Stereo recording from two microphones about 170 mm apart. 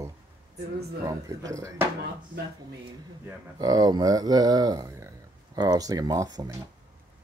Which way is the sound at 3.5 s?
20° right (ahead or behind).